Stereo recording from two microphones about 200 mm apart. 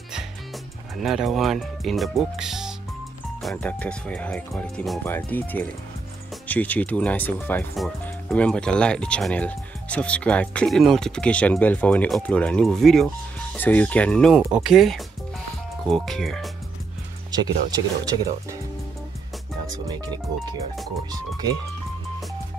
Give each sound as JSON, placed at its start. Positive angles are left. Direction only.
{"t": 1.0, "sound": "speech", "side_deg": 0}
{"t": 17.3, "sound": "speech", "side_deg": -20}
{"t": 19.9, "sound": "speech", "side_deg": -20}